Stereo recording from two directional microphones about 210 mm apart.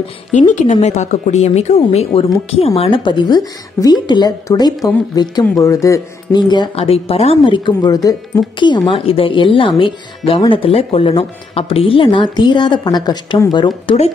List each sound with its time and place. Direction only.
0.3 s speech: 35° left (ahead or behind)